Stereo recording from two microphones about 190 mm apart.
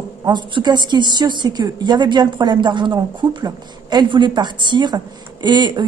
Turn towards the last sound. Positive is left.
turn(degrees=-25)  # may be behind; listen again after turning